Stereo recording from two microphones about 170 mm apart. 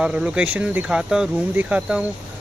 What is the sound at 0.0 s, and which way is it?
Speech, 5° right (ahead or behind).